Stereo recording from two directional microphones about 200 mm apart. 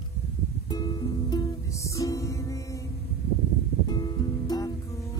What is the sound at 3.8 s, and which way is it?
Music, 20° left (ahead or behind).